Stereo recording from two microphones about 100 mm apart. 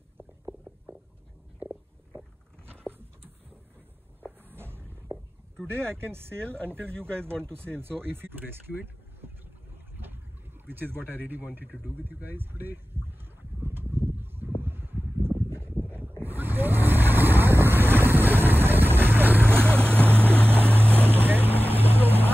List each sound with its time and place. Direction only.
1.6 s a sound: 15° right (ahead or behind)
4.2 s a sound: 20° right (ahead or behind)
5.7 s speech: 25° right (ahead or behind)
6.4 s speech: 10° left (ahead or behind)
6.7 s speech: 20° right (ahead or behind)
7.0 s speech: 10° left (ahead or behind)
7.5 s speech: 25° right (ahead or behind)
9.9 s boat: 20° right (ahead or behind)
10.7 s speech: 20° right (ahead or behind)
13.6 s a sound: 20° right (ahead or behind)
15.7 s boat: 20° right (ahead or behind)
19.5 s boat: 10° left (ahead or behind)
20.6 s boat: 20° right (ahead or behind)